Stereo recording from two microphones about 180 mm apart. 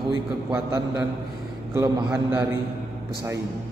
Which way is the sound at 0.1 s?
20° right (ahead or behind).